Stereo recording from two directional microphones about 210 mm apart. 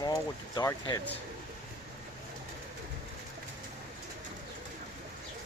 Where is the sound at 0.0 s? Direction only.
15° left (ahead or behind).